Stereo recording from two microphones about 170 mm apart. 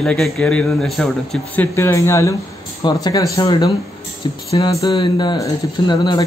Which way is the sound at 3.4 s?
35° left (ahead or behind).